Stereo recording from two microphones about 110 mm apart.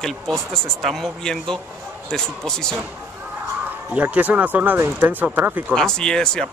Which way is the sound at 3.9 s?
15° right (ahead or behind).